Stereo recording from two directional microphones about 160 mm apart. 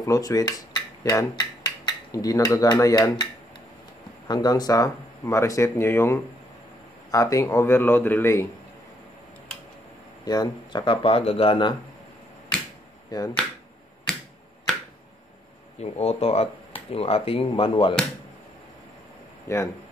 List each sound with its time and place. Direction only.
0.0 s speech: 20° left (ahead or behind)
4.3 s speech: 25° left (ahead or behind)
10.2 s speech: 25° left (ahead or behind)
13.1 s speech: 25° left (ahead or behind)
14.1 s finger snapping: 5° left (ahead or behind)
15.8 s speech: 40° left (ahead or behind)
19.4 s speech: 20° left (ahead or behind)